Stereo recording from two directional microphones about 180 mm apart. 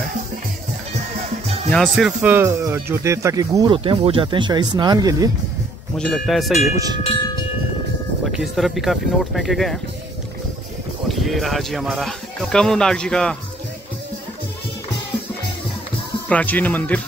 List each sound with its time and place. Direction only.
1.7 s speech: centre (ahead or behind); by 5.3 s 20° right (ahead or behind)
5.9 s speech: centre (ahead or behind)
8.3 s speech: centre (ahead or behind)
11.1 s speech: centre (ahead or behind)
16.3 s speech: 10° left (ahead or behind)